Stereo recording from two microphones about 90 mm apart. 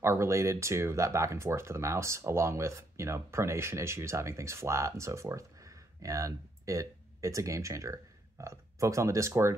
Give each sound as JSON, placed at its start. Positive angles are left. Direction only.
{"t": 0.0, "sound": "speech", "side_deg": -30}